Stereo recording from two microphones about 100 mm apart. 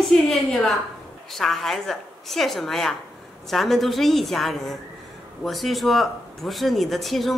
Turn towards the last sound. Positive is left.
turn(degrees=0)  # may be behind; listen again after turning